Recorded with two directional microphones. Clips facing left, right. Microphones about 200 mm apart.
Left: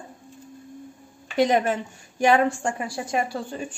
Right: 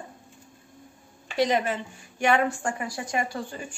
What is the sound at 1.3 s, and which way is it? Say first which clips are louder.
Speech: left 4 dB; 50° left (ahead or behind).